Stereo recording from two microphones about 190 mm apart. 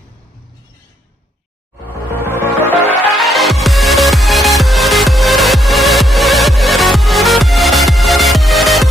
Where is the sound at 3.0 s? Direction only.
Centre (ahead or behind).